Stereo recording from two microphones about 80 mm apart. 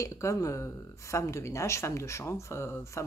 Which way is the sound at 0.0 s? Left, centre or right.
Left.